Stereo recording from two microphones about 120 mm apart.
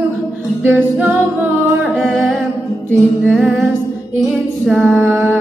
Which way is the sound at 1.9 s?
5° left (ahead or behind).